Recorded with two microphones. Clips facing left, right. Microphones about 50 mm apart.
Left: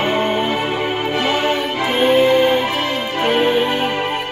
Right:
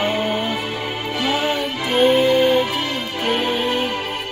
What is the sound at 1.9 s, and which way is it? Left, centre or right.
Music, centre.